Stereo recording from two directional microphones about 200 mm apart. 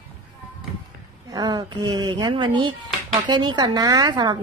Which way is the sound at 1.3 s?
20° right (ahead or behind).